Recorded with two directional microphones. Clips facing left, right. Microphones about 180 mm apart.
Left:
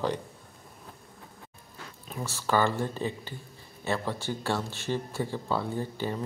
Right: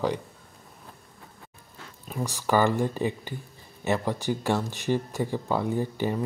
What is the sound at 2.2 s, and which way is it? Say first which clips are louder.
Speech: right 3 dB; 15° right (ahead or behind).